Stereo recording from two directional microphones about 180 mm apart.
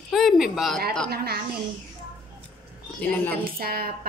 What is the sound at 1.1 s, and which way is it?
Speech, 60° right (ahead or behind).